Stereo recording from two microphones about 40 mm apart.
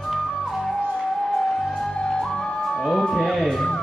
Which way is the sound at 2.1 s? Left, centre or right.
Centre.